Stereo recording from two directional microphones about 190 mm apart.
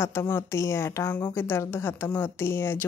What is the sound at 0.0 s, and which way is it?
A woman's voice, 15° left (ahead or behind).